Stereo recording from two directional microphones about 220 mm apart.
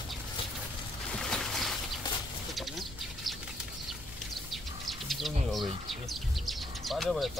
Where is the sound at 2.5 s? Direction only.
Centre (ahead or behind).